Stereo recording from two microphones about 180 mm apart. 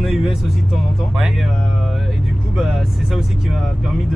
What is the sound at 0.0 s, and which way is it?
Speech, 5° right (ahead or behind).